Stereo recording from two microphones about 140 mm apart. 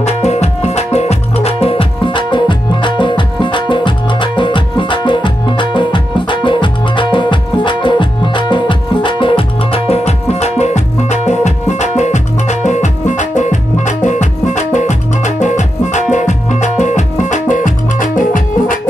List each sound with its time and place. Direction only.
0.0 s music: 50° left (ahead or behind); by 18.8 s 70° left (ahead or behind)